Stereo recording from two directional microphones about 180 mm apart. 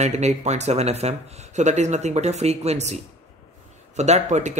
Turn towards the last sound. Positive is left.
turn(degrees=-40)  # may be behind; listen again after turning